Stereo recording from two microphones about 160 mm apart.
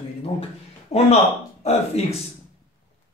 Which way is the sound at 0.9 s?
40° left (ahead or behind).